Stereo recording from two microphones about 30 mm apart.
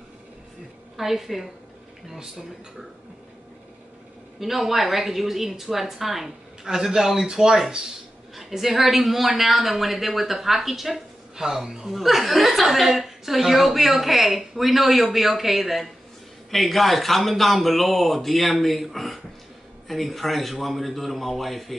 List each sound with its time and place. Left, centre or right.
0.9 s a woman's voice: centre
4.4 s a woman's voice: centre
6.6 s a woman's voice: centre
8.4 s a woman's voice: centre
11.9 s a woman's voice: centre